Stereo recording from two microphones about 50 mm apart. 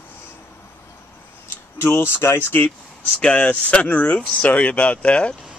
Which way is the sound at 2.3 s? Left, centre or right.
Left.